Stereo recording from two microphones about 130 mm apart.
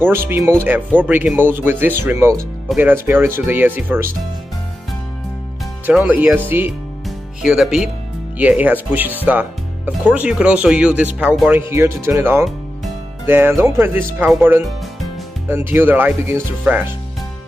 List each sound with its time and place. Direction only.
0.0 s speech: 15° right (ahead or behind)
6.0 s speech: 15° right (ahead or behind)
7.1 s speech: centre (ahead or behind)
11.7 s speech: 20° right (ahead or behind)
15.4 s speech: 15° right (ahead or behind)